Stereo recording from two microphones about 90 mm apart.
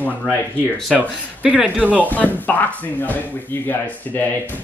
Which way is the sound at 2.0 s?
20° left (ahead or behind).